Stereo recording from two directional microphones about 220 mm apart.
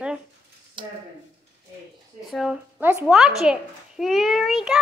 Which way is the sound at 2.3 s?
Centre (ahead or behind).